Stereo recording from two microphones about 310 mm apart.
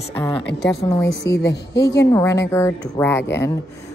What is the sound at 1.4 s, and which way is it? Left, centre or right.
Speech, left.